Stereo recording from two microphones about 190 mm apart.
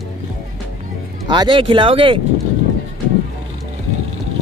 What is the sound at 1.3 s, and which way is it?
Speech, 25° right (ahead or behind).